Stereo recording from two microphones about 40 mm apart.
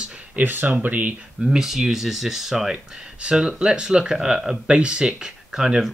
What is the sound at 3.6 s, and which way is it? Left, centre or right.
Speech, right.